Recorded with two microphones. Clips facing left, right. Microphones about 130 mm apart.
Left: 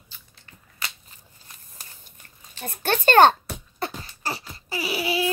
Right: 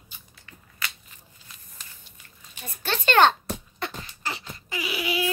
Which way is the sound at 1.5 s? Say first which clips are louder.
Left 3 dB; 45° left (ahead or behind).